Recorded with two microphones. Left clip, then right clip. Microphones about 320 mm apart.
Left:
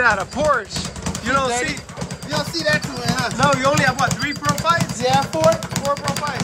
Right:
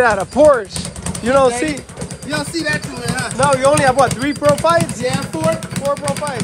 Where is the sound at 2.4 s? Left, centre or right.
Centre.